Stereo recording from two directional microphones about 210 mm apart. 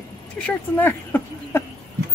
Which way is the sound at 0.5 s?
10° left (ahead or behind).